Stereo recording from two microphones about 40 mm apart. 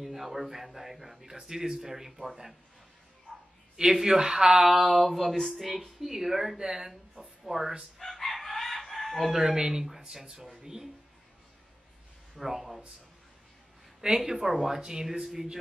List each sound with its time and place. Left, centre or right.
0.0 s speech: centre
3.7 s a woman's voice: centre
8.0 s chicken: centre
9.3 s speech: centre
12.4 s speech: centre
14.0 s speech: centre